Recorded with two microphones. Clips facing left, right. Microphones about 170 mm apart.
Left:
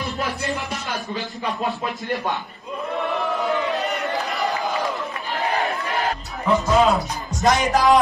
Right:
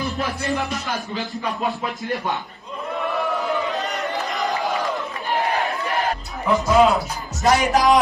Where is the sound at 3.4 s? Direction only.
Centre (ahead or behind).